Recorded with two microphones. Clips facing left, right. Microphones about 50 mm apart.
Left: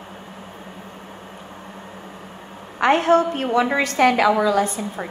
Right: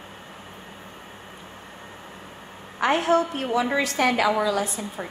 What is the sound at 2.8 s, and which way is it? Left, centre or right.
A woman's voice, left.